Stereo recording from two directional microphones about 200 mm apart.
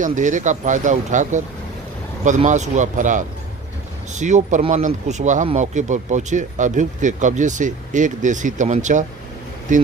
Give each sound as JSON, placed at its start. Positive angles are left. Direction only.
{"t": 0.0, "sound": "speech", "side_deg": -40}